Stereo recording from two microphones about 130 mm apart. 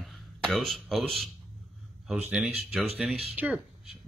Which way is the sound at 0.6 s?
Centre (ahead or behind).